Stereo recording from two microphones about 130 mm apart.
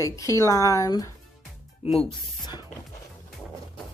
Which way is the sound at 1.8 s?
45° left (ahead or behind).